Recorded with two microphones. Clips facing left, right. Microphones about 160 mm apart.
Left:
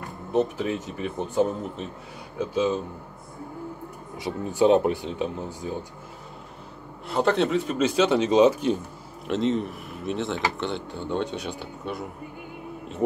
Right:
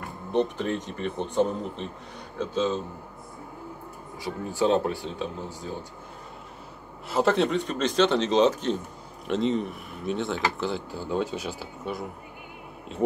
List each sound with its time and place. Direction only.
0.3 s a man's voice: 5° left (ahead or behind)
4.2 s speech: 20° left (ahead or behind)
7.1 s a man's voice: centre (ahead or behind)